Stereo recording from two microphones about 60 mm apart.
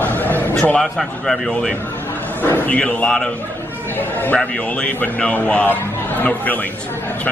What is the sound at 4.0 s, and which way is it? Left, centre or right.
Speech, left.